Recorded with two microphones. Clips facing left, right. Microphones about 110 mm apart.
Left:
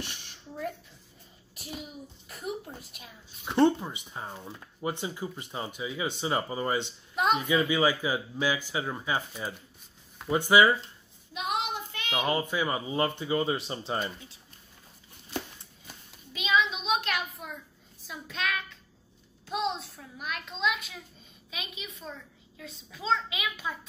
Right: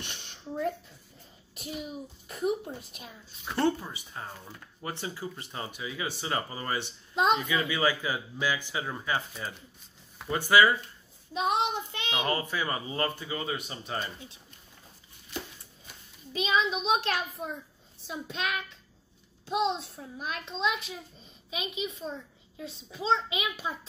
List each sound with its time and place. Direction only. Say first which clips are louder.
0.0 s a child's voice: left 2 dB; 25° right (ahead or behind)
2.2 s a child's voice: right 7 dB; 25° right (ahead or behind)
3.4 s speech: left 4 dB; 15° left (ahead or behind)
11.3 s speech: right 4 dB; 30° right (ahead or behind)
12.2 s speech: left 3 dB; 15° left (ahead or behind)
16.3 s a child's voice: even; 35° right (ahead or behind)